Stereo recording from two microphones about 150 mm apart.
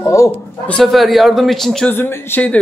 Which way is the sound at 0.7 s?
Centre (ahead or behind).